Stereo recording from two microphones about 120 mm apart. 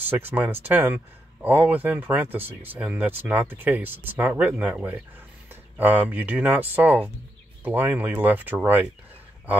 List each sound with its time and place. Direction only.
0.1 s speech: 15° right (ahead or behind)